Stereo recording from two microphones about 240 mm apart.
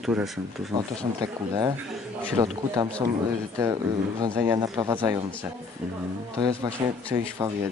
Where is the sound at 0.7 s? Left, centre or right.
Centre.